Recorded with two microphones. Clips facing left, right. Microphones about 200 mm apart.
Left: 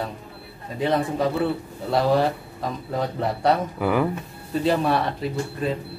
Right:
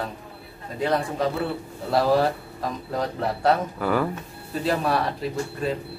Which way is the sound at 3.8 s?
15° left (ahead or behind).